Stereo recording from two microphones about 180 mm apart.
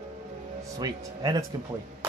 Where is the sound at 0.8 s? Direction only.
20° right (ahead or behind).